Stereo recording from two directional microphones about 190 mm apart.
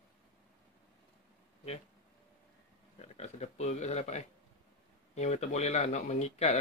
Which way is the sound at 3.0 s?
35° left (ahead or behind).